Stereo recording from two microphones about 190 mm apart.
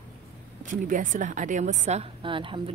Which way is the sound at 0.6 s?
45° right (ahead or behind).